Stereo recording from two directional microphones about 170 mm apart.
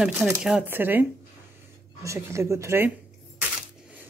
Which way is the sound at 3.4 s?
10° right (ahead or behind).